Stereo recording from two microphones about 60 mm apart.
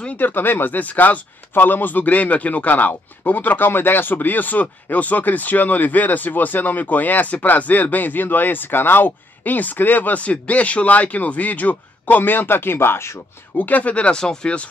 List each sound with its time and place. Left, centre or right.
0.2 s speech: left
13.6 s speech: left